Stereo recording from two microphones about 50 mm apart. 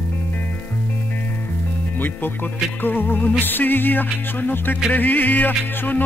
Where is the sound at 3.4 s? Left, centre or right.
Left.